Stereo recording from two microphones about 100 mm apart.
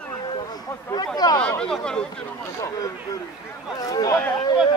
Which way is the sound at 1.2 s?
40° left (ahead or behind).